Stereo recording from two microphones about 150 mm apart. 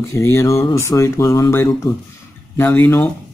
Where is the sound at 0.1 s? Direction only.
15° left (ahead or behind).